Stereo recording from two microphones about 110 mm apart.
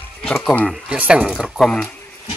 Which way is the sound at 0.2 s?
5° left (ahead or behind).